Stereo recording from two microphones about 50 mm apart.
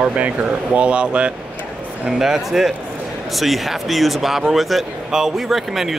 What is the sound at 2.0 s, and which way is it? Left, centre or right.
Speech, centre.